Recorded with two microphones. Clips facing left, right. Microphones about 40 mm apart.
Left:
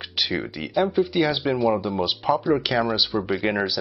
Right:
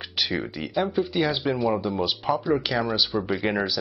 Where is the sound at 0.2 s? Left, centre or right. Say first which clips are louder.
Left 1 dB; centre.